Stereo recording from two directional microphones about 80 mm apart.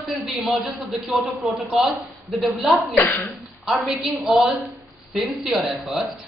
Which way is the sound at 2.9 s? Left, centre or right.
Left.